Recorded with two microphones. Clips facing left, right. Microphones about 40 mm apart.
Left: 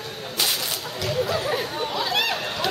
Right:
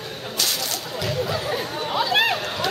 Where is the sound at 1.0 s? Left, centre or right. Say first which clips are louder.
Left 2 dB; centre.